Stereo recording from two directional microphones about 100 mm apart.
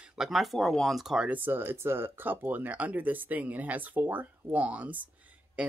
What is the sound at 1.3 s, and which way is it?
Speech, 20° right (ahead or behind).